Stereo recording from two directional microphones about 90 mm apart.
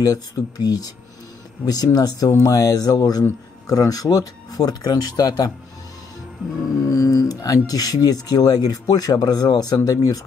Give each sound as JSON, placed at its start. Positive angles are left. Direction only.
{"t": 0.0, "sound": "speech", "side_deg": 45}
{"t": 6.8, "sound": "speech", "side_deg": 40}